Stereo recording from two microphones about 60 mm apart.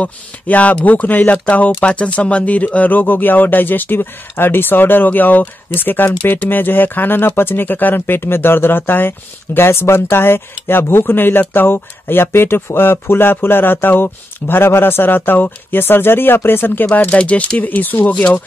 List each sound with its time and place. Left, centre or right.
0.0 s speech: left
17.2 s speech: centre